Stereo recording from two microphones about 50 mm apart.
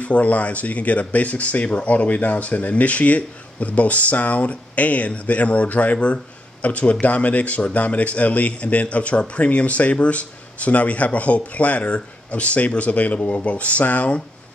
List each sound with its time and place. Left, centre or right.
0.0 s speech: left